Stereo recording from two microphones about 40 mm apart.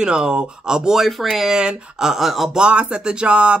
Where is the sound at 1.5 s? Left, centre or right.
Right.